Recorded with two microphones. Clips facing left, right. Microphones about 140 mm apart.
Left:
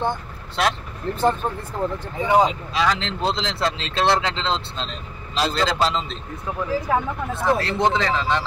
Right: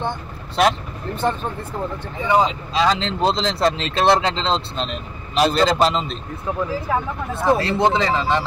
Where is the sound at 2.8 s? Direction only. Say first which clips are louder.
Right 4 dB; 20° right (ahead or behind).